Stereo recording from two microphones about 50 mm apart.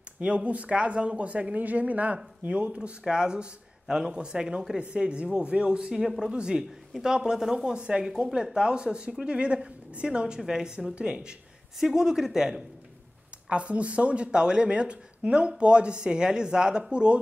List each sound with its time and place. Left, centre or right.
0.2 s speech: right
13.5 s speech: right